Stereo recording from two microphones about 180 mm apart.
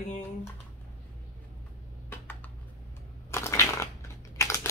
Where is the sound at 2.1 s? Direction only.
10° left (ahead or behind).